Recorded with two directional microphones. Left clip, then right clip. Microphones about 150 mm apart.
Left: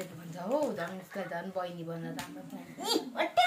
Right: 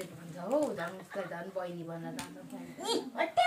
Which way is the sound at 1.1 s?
25° left (ahead or behind).